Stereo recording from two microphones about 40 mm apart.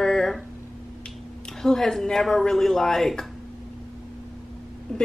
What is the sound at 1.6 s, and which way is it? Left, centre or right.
Speech, centre.